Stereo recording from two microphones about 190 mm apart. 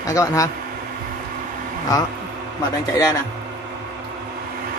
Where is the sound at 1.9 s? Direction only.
20° left (ahead or behind).